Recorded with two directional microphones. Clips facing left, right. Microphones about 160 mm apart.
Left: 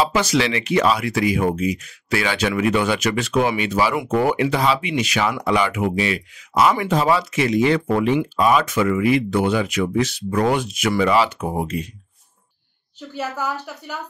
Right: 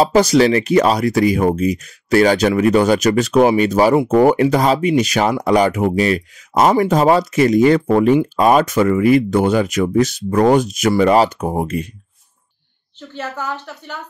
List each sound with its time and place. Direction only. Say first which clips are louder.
0.0 s speech: right 7 dB; 40° right (ahead or behind)
13.1 s a woman's voice: even; 10° left (ahead or behind)